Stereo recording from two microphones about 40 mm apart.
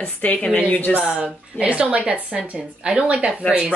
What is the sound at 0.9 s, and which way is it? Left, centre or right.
A woman's voice, right.